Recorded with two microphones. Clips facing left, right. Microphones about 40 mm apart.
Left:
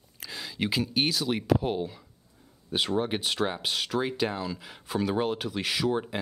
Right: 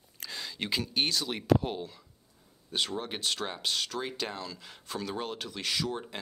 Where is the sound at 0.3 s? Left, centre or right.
Centre.